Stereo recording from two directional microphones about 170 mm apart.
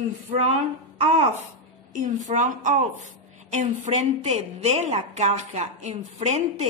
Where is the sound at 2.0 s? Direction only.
45° right (ahead or behind).